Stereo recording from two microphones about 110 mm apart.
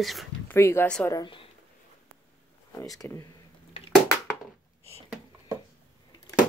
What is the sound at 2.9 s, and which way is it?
Speech, 30° left (ahead or behind).